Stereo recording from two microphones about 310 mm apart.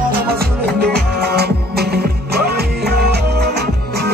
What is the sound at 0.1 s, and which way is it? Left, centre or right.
Music, right.